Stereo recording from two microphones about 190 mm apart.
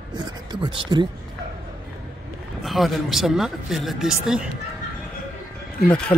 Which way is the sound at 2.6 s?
Centre (ahead or behind).